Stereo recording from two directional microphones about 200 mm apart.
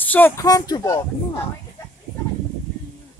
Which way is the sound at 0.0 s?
10° left (ahead or behind).